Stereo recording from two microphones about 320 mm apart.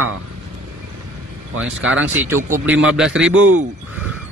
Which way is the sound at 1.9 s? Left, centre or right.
Right.